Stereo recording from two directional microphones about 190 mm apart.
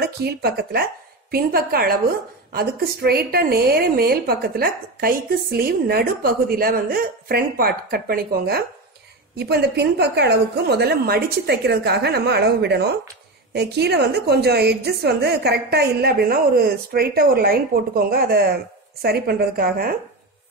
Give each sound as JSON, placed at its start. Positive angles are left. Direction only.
{"t": 0.0, "sound": "a woman's voice", "side_deg": -55}